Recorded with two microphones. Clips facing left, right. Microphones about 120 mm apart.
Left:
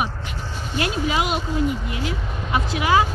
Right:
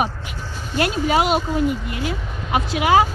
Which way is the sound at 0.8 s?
45° right (ahead or behind).